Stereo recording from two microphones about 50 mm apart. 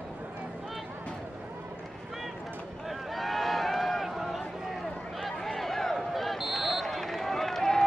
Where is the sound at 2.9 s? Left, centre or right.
Centre.